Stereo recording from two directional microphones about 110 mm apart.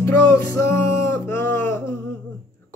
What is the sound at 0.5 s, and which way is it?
Music, 25° left (ahead or behind).